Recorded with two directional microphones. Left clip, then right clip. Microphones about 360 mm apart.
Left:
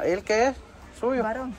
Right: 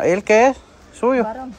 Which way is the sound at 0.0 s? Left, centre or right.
Right.